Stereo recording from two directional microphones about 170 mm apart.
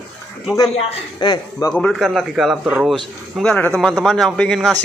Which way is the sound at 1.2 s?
25° left (ahead or behind).